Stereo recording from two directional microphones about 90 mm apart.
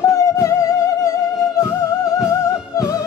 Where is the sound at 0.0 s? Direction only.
35° left (ahead or behind).